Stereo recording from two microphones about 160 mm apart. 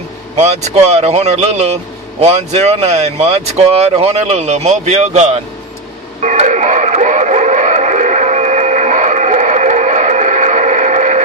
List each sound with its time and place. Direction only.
0.4 s speech: 40° right (ahead or behind)
6.2 s radio: 45° right (ahead or behind)